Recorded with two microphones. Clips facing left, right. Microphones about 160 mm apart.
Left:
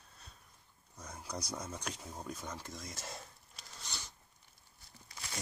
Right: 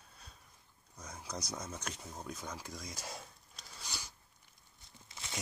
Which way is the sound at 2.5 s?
Centre (ahead or behind).